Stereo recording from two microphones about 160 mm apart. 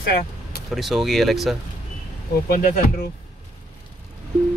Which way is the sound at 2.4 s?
55° left (ahead or behind).